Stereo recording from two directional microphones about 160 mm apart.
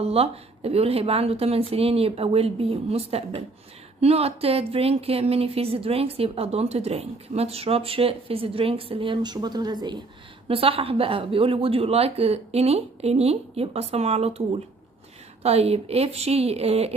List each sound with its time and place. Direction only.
0.0 s speech: 40° right (ahead or behind)